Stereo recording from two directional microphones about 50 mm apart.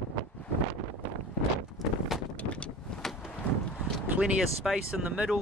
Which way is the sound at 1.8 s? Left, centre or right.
Centre.